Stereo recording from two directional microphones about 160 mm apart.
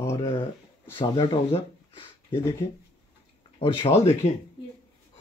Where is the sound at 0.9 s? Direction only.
25° left (ahead or behind).